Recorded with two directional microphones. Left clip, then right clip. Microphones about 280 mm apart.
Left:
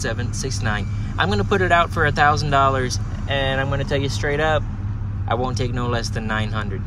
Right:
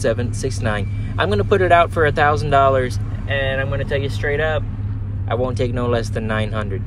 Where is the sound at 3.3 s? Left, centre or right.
Left.